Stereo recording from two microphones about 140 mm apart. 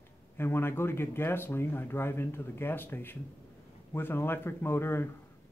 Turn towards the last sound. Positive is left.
turn(degrees=15)  # may be behind; listen again after turning